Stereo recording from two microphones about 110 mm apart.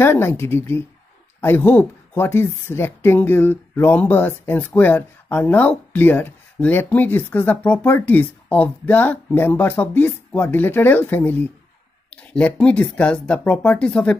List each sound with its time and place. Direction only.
0.0 s a woman's voice: 20° left (ahead or behind)